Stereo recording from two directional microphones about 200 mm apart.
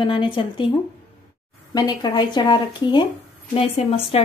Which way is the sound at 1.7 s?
20° left (ahead or behind).